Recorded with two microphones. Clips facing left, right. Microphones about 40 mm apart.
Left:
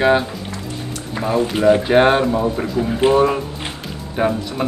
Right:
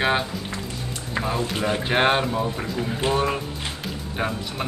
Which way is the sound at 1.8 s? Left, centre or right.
Centre.